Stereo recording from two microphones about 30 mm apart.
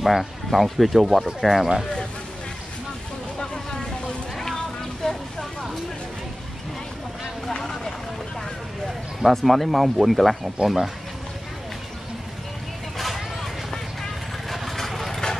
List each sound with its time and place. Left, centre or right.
0.0 s speech: centre
5.0 s vehicle: left
9.3 s speech: centre
12.9 s vehicle: centre